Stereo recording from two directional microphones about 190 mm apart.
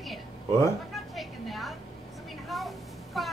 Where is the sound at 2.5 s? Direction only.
Centre (ahead or behind).